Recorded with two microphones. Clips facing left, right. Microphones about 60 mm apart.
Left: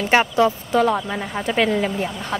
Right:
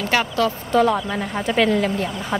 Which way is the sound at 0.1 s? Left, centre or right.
Left.